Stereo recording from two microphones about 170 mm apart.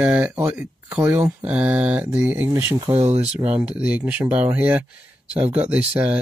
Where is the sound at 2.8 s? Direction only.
35° right (ahead or behind).